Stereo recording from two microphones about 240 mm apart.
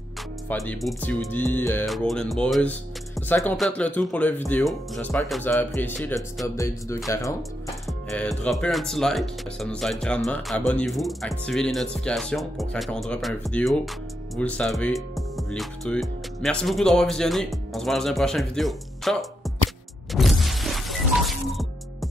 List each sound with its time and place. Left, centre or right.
0.5 s speech: centre
20.1 s music: centre